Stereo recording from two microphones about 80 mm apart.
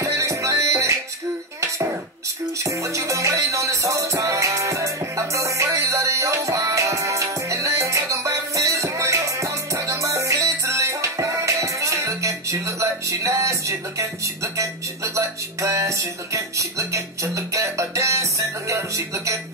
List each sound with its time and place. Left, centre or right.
0.0 s music: right
2.6 s music: right